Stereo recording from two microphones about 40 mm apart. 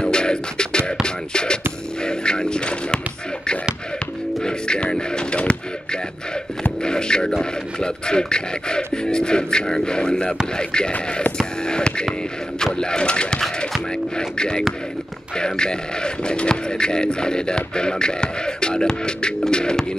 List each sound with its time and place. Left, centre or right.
0.0 s music: left
4.4 s a sound: left
6.8 s music: left
7.8 s speech: left
11.6 s music: left
12.7 s speech: left